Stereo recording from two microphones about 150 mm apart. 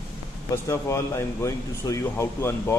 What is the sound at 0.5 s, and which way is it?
Speech, 20° left (ahead or behind).